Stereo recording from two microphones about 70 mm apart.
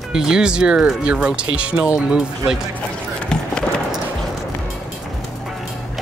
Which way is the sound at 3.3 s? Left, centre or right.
Centre.